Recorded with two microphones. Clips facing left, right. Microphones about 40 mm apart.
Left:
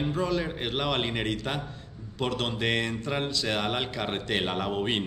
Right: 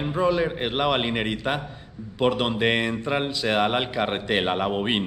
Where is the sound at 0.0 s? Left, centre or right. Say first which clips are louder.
Right 5 dB; centre.